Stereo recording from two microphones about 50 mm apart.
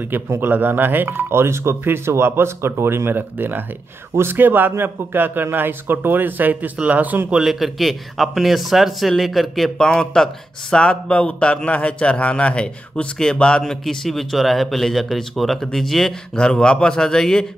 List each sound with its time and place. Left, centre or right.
0.0 s speech: right
3.2 s speech: right
7.4 s a man's voice: centre
9.8 s speech: centre